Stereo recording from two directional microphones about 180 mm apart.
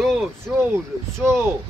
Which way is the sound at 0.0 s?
Centre (ahead or behind).